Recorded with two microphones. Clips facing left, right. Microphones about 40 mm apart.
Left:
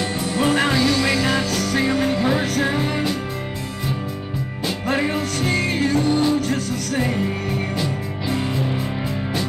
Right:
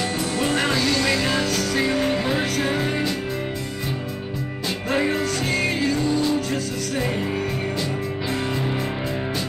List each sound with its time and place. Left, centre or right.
0.4 s music: left
0.7 s music: centre
2.6 s music: left
4.9 s music: centre
5.7 s music: left